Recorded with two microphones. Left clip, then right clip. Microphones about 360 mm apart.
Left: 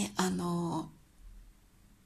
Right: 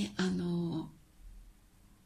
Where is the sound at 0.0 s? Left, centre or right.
Centre.